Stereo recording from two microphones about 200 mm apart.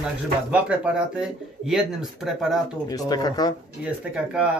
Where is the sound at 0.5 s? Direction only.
5° right (ahead or behind).